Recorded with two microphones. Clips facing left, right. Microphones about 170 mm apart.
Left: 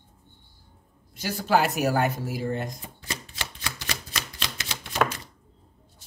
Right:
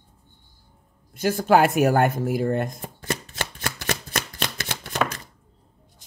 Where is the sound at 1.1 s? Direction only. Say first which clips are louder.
Right 5 dB; 50° right (ahead or behind).